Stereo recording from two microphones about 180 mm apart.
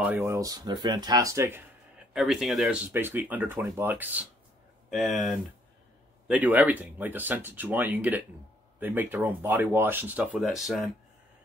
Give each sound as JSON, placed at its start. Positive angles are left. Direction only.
{"t": 0.0, "sound": "speech", "side_deg": -10}
{"t": 2.1, "sound": "speech", "side_deg": 0}